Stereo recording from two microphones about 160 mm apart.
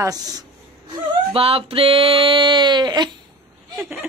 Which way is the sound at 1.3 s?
35° right (ahead or behind).